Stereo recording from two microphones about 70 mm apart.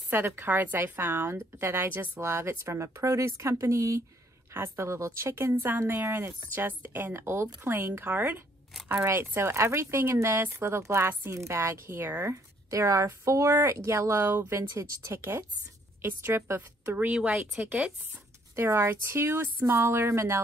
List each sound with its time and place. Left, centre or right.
0.1 s speech: right
2.3 s a woman's voice: right; by 17.9 s centre
18.6 s speech: right